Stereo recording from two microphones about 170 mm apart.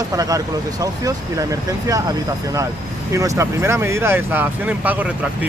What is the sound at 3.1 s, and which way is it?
Speech, 15° right (ahead or behind).